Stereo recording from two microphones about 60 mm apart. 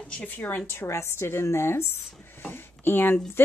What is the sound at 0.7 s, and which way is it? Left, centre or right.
Speech, left.